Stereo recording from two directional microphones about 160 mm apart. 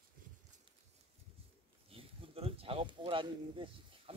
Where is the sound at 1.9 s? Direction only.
35° right (ahead or behind).